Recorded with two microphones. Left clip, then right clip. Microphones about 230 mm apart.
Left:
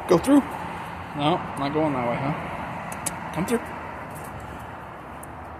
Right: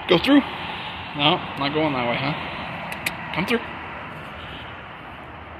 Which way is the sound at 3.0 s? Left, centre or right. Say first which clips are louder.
Right 6 dB; centre.